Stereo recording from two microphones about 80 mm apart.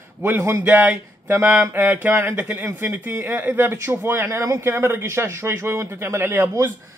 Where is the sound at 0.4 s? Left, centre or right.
Right.